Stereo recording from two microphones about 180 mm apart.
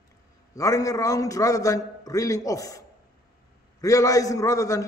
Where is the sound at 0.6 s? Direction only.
20° left (ahead or behind).